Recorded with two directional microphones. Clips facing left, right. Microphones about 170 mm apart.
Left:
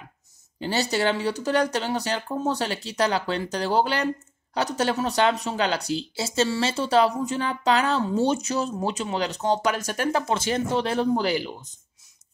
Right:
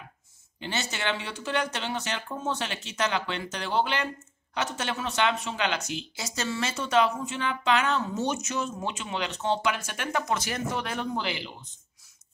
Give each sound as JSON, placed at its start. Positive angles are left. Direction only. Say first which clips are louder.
{"t": 0.6, "sound": "speech", "louder": "left 9 dB", "side_deg": 35}